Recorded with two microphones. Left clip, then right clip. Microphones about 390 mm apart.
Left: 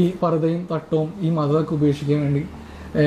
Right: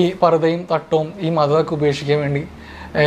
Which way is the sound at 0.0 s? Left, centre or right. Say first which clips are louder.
Right 6 dB; right.